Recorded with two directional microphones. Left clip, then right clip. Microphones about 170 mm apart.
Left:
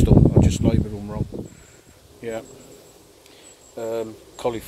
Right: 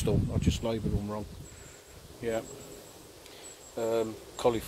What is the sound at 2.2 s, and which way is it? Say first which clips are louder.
Speech: left 2 dB; 15° left (ahead or behind).